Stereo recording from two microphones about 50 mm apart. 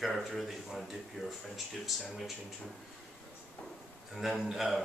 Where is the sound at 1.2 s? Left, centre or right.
Centre.